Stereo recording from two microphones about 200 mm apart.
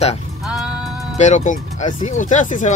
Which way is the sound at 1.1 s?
35° left (ahead or behind).